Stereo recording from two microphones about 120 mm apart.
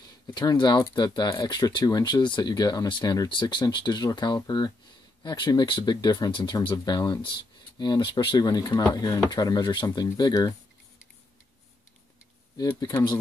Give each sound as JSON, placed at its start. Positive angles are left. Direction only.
{"t": 0.3, "sound": "speech", "side_deg": 40}
{"t": 12.5, "sound": "speech", "side_deg": 35}